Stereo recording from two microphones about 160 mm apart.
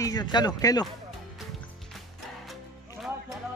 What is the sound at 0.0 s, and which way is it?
Speech, 25° left (ahead or behind).